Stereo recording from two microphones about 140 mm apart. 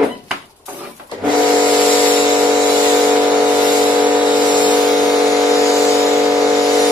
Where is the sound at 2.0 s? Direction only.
10° right (ahead or behind).